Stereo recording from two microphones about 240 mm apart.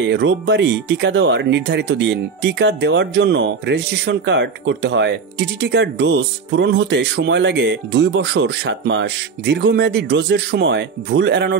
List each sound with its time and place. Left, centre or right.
0.1 s speech: right